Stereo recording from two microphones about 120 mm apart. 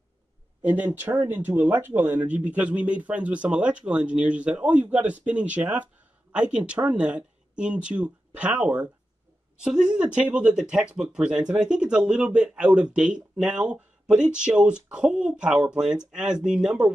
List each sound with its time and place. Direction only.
0.6 s speech: 15° right (ahead or behind)